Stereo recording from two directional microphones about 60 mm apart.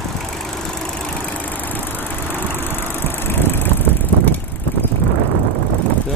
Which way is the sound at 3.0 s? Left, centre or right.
Left.